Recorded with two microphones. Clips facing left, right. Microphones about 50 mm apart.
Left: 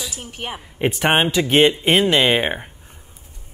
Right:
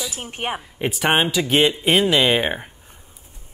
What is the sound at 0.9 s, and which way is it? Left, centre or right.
Speech, centre.